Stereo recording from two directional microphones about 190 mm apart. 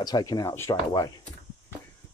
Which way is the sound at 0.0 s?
20° left (ahead or behind).